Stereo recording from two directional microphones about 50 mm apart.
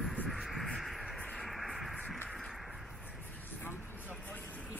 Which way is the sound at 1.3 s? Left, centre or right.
Centre.